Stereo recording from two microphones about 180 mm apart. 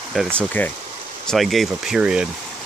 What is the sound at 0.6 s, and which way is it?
Speech, 10° left (ahead or behind).